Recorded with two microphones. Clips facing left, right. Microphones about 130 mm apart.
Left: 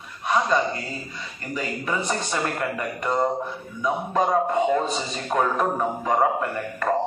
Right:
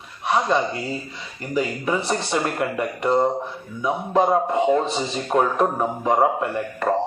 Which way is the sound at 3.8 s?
25° right (ahead or behind).